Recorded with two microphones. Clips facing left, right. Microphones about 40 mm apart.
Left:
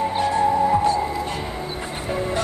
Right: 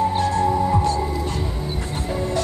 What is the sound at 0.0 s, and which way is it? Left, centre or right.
Music, centre.